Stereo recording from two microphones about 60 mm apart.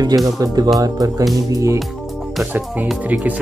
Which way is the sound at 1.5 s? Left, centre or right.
Right.